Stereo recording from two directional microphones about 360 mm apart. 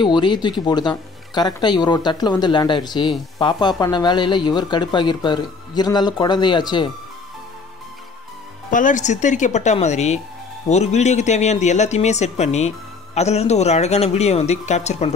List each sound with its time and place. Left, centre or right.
0.0 s speech: centre
8.6 s speech: left